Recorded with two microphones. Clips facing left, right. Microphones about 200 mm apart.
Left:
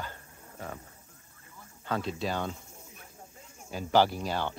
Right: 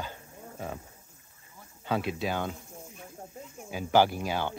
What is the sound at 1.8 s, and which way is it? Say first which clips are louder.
Speech: right 2 dB; 10° right (ahead or behind).